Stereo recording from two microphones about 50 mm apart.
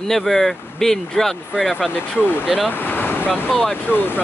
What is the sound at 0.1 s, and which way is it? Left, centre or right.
Speech, centre.